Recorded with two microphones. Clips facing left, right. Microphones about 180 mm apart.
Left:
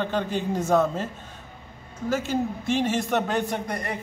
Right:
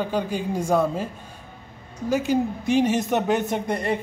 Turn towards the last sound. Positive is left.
turn(degrees=-25)  # may be behind; listen again after turning